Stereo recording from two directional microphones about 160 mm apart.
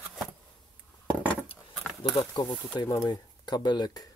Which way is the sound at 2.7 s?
25° left (ahead or behind).